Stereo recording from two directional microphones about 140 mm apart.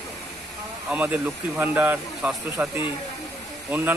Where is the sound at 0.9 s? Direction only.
10° right (ahead or behind).